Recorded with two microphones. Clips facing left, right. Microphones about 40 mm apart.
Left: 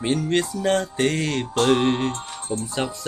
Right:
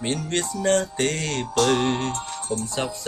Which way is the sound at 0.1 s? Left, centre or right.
Centre.